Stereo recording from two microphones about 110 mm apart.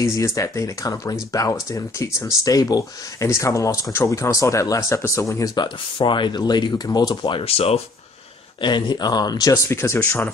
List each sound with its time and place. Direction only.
0.0 s speech: 30° left (ahead or behind)
5.9 s speech: 50° left (ahead or behind)
7.3 s speech: 60° left (ahead or behind)
8.5 s speech: 45° left (ahead or behind)
9.7 s speech: 25° left (ahead or behind)